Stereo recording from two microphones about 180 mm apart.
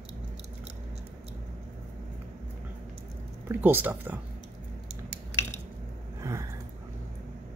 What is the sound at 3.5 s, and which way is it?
Speech, 10° right (ahead or behind).